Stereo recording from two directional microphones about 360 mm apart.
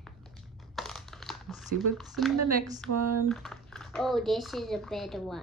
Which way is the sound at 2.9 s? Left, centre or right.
Right.